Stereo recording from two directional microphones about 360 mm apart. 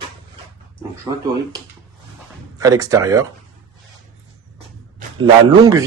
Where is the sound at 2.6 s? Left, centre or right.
Centre.